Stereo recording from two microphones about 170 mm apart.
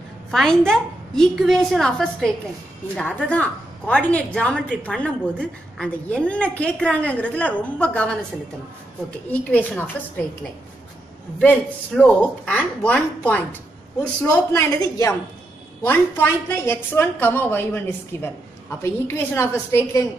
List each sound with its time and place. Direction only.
0.3 s a woman's voice: 5° left (ahead or behind)
9.3 s a woman's voice: 10° left (ahead or behind)
11.3 s a woman's voice: 10° left (ahead or behind)